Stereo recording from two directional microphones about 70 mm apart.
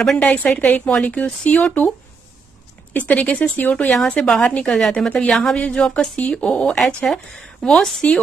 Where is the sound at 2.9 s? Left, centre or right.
Left.